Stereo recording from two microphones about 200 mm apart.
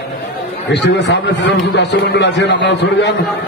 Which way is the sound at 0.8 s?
60° left (ahead or behind).